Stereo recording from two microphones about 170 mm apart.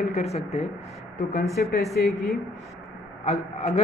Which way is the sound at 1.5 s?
Centre (ahead or behind).